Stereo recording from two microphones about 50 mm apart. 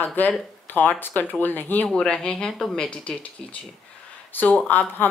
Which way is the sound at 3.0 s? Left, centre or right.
Left.